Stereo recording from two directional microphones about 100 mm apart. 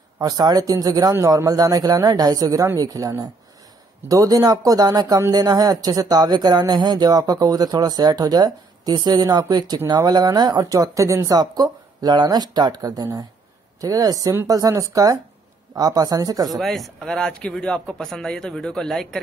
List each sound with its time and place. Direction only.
0.2 s speech: 40° right (ahead or behind)
16.4 s speech: centre (ahead or behind)